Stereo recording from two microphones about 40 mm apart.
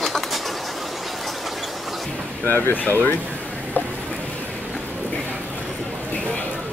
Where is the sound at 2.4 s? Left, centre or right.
Left.